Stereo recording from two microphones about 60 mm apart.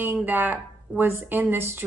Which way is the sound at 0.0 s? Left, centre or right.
Right.